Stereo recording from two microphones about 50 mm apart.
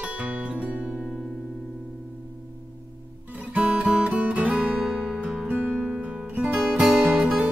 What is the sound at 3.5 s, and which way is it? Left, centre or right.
Guitar, right.